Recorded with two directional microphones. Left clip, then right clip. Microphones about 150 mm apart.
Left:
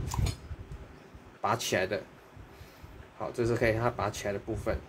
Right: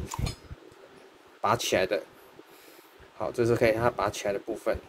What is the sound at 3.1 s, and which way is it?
Speech, 30° right (ahead or behind).